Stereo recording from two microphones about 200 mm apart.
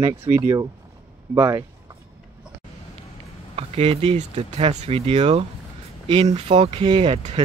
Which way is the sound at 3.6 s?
30° right (ahead or behind).